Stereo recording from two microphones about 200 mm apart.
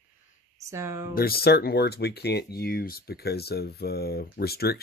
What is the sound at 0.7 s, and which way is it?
Speech, 15° right (ahead or behind).